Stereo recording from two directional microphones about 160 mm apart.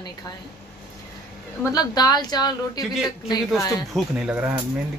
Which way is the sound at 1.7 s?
25° left (ahead or behind).